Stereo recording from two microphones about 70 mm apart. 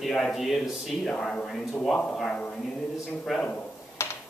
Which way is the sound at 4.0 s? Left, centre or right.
Left.